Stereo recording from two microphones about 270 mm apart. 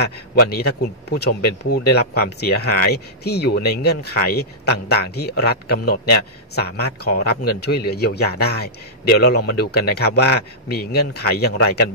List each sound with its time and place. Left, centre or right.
0.0 s speech: left